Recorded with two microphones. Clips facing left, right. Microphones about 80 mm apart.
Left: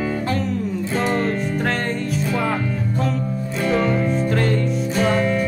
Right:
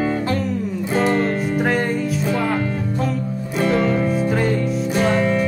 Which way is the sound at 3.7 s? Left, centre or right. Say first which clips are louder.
Even; centre.